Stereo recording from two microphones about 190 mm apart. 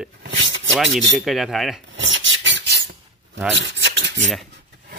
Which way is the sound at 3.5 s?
75° right (ahead or behind).